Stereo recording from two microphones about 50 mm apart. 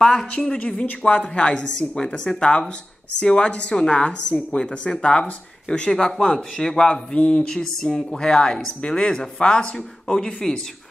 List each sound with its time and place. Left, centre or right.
0.0 s a woman's voice: centre